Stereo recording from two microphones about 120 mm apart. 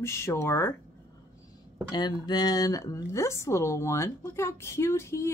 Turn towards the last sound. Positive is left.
turn(degrees=20)  # may be behind; listen again after turning